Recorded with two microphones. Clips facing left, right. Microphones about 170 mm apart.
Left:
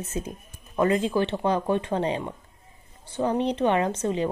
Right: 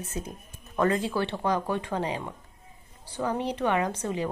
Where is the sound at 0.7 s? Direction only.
15° left (ahead or behind).